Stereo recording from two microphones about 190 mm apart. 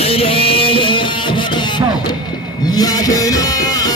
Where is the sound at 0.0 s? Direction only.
30° left (ahead or behind).